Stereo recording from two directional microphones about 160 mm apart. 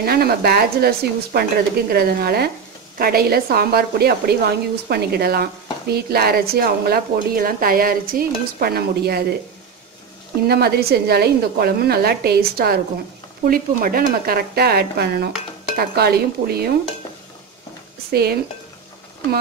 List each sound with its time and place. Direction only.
0.0 s a woman's voice: 70° right (ahead or behind)
10.4 s a woman's voice: 80° right
13.5 s a woman's voice: 60° right (ahead or behind)
18.1 s a woman's voice: 75° right (ahead or behind)